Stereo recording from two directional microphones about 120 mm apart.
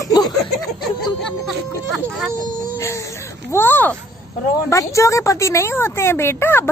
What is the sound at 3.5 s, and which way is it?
A woman's voice, 15° left (ahead or behind).